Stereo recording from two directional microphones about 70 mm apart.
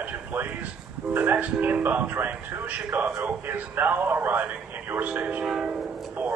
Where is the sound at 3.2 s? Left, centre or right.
Right.